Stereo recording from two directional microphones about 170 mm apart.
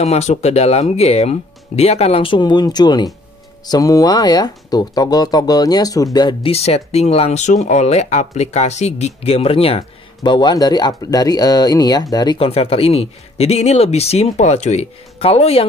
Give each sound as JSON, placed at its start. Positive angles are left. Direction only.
{"t": 0.0, "sound": "speech", "side_deg": 40}